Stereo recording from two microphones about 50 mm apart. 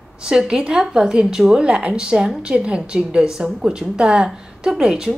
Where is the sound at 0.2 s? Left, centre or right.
Centre.